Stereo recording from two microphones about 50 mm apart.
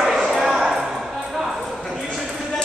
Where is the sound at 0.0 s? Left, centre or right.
Centre.